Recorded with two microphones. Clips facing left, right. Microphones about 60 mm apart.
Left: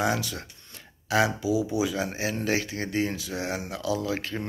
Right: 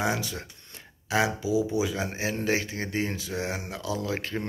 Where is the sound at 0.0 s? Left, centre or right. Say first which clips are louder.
Left 2 dB; right.